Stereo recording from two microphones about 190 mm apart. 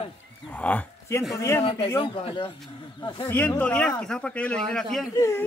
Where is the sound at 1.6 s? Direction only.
30° left (ahead or behind).